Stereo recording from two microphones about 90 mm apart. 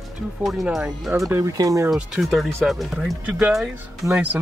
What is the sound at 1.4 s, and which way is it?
Speech, 40° right (ahead or behind).